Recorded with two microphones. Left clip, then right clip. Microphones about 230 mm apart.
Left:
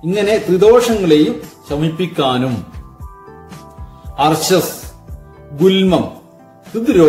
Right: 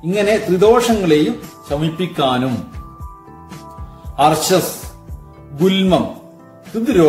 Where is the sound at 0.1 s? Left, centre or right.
Centre.